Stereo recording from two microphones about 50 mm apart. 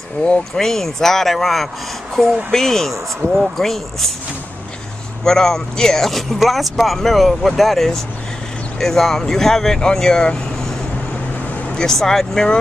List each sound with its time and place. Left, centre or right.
0.6 s speech: centre
2.5 s speech: centre
3.2 s speech: left
3.5 s speech: centre
5.2 s speech: centre
11.7 s speech: centre